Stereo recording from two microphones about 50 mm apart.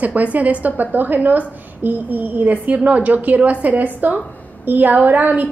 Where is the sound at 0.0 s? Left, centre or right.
Right.